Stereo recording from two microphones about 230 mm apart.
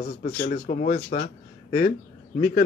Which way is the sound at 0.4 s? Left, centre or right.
Left.